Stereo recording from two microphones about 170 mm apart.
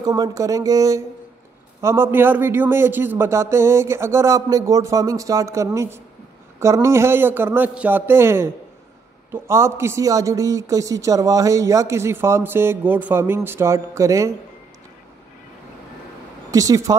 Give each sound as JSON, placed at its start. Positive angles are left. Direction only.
{"t": 0.0, "sound": "a man's voice", "side_deg": -20}
{"t": 16.4, "sound": "speech", "side_deg": -20}